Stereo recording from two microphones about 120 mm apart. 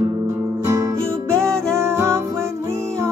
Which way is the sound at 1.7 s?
20° right (ahead or behind).